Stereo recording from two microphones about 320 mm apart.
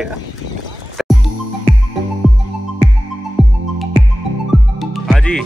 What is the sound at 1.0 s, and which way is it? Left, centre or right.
Music, centre.